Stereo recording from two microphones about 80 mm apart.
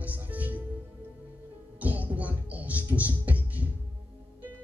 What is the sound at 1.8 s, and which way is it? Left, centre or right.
Speech, centre.